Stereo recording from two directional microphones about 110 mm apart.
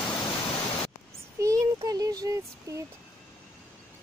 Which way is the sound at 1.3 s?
30° right (ahead or behind).